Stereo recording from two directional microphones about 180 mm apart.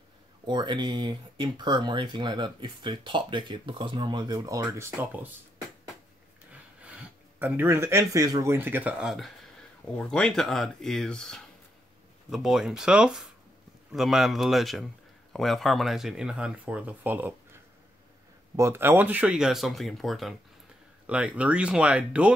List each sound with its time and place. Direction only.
0.5 s speech: 25° right (ahead or behind)
6.8 s speech: 10° right (ahead or behind)
18.6 s speech: 15° right (ahead or behind)